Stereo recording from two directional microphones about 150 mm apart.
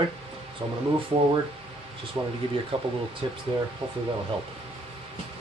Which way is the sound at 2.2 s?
25° right (ahead or behind).